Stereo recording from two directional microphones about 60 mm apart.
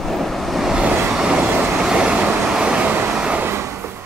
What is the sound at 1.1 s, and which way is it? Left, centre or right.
Vehicle, centre.